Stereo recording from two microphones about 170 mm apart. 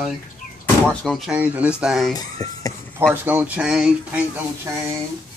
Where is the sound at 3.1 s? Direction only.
10° right (ahead or behind).